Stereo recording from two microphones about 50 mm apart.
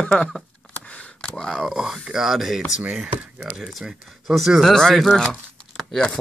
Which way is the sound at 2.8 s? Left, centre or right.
Right.